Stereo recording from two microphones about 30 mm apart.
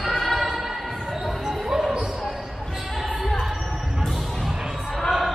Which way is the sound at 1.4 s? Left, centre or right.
Centre.